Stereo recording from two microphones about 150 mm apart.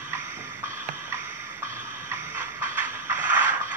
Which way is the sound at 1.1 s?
15° right (ahead or behind).